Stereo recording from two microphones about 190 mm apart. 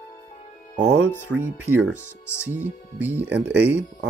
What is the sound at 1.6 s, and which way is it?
Speech, 10° right (ahead or behind).